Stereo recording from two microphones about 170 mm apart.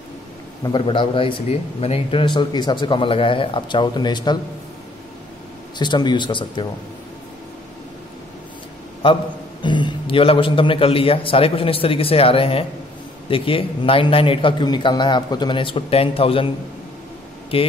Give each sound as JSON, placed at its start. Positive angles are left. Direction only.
{"t": 0.7, "sound": "speech", "side_deg": 30}
{"t": 5.8, "sound": "speech", "side_deg": 25}
{"t": 9.0, "sound": "a man's voice", "side_deg": 30}
{"t": 17.5, "sound": "a man's voice", "side_deg": 35}